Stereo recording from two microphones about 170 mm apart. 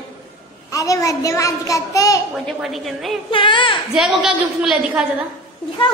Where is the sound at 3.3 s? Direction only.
30° left (ahead or behind).